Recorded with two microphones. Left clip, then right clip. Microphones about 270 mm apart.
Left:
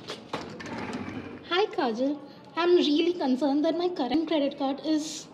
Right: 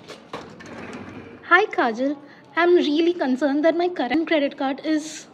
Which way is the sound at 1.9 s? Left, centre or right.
Centre.